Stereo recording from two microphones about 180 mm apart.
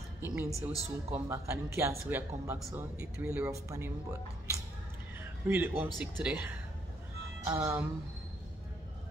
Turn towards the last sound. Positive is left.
turn(degrees=-10)  # may be behind; listen again after turning